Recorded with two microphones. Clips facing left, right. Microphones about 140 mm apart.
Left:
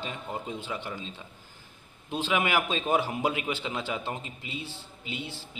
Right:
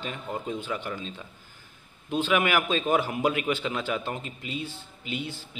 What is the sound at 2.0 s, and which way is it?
Speech, 30° left (ahead or behind).